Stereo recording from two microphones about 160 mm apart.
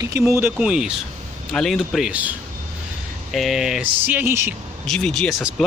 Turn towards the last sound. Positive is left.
turn(degrees=5)  # may be behind; listen again after turning